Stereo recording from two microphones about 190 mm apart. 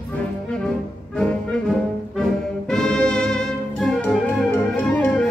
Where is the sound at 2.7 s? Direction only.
5° left (ahead or behind).